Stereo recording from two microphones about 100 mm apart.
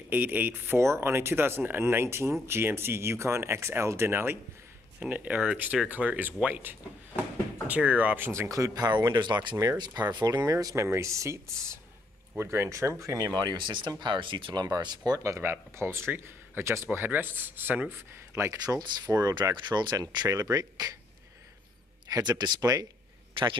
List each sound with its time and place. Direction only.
0.1 s speech: 20° right (ahead or behind)
8.3 s speech: 30° right (ahead or behind)
22.4 s speech: 45° right (ahead or behind)